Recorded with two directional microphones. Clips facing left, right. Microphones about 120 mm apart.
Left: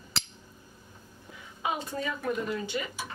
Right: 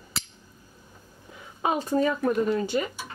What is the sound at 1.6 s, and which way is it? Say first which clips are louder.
A woman's voice: right 8 dB; 40° right (ahead or behind).